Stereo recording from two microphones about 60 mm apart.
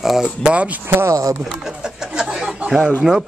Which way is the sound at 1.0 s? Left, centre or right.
Right.